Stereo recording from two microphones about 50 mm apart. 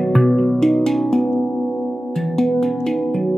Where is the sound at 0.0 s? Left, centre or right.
Centre.